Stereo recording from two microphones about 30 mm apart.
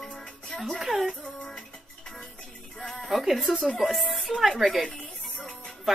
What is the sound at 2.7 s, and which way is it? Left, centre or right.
Music, centre.